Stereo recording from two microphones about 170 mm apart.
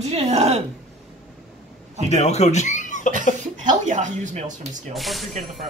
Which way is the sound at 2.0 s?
40° left (ahead or behind).